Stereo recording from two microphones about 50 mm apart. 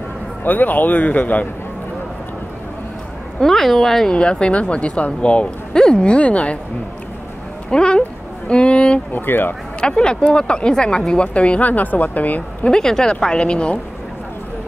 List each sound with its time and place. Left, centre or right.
0.4 s a man's voice: left
3.3 s speech: centre
4.1 s speech: left
7.7 s speech: centre
9.1 s speech: left
9.8 s speech: centre; by 12.4 s left
12.6 s speech: centre